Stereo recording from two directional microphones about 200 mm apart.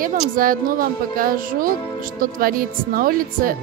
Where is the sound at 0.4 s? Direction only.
45° right (ahead or behind).